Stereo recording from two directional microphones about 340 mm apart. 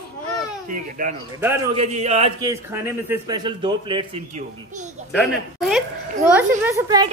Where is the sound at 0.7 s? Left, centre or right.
Right.